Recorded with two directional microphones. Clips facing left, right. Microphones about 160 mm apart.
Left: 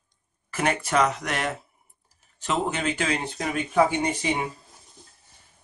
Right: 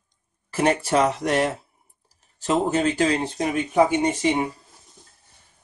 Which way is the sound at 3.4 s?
20° right (ahead or behind).